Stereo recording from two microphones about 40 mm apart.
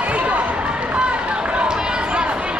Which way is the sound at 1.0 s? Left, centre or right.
Right.